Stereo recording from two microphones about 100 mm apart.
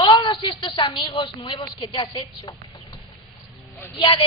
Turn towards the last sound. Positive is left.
turn(degrees=50)  # may be behind; listen again after turning